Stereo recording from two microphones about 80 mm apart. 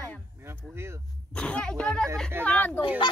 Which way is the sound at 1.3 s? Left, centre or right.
Centre.